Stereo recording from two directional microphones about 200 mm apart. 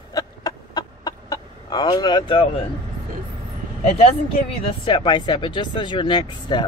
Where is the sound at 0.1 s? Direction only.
20° left (ahead or behind).